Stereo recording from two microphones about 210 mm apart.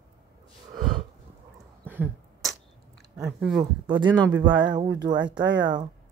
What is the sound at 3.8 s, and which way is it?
Speech, 20° right (ahead or behind).